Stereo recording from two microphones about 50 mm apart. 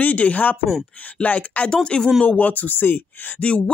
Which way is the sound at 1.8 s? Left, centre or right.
Centre.